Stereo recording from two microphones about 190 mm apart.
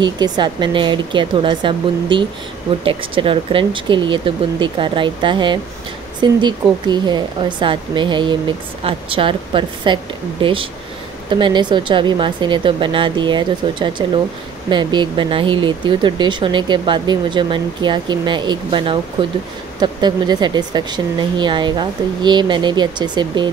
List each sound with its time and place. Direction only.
0.0 s a woman's voice: 25° right (ahead or behind)